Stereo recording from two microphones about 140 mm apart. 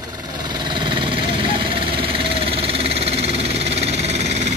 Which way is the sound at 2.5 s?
45° right (ahead or behind).